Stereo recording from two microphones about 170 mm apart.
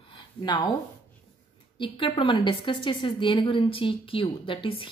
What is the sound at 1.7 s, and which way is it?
A woman's voice, 30° left (ahead or behind).